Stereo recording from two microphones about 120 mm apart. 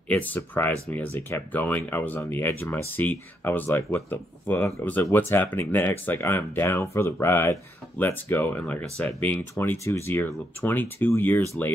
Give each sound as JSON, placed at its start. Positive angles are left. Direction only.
{"t": 0.1, "sound": "speech", "side_deg": 15}